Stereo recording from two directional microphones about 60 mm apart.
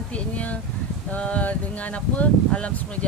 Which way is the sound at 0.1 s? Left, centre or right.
Left.